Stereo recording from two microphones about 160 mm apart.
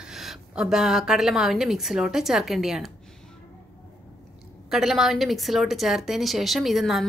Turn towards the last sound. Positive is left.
turn(degrees=0)  # may be behind; listen again after turning